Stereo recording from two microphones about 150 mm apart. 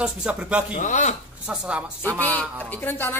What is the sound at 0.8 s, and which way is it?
Speech, 50° left (ahead or behind).